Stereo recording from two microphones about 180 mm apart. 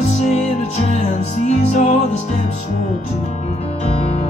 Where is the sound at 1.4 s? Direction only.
40° left (ahead or behind).